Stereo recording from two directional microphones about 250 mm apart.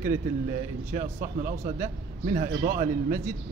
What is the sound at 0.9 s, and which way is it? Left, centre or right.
A man's voice, right.